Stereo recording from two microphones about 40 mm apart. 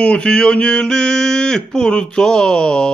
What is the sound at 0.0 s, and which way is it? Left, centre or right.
Mantra, left.